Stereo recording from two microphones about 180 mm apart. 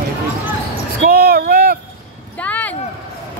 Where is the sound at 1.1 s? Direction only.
55° right (ahead or behind).